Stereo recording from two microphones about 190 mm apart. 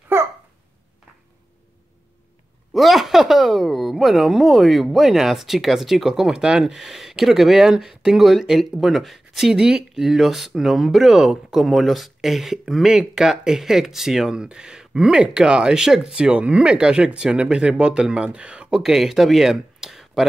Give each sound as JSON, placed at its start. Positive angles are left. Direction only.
{"t": 0.1, "sound": "hiccup", "side_deg": -10}
{"t": 2.7, "sound": "speech", "side_deg": 0}